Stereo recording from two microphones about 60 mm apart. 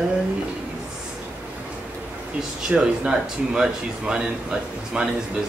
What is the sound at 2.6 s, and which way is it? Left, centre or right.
A man's voice, centre.